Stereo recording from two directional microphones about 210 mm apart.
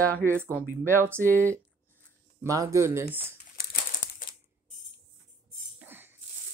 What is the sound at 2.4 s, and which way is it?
Speech, 15° right (ahead or behind).